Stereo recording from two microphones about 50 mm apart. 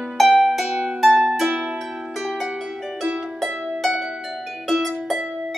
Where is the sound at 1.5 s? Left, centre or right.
Right.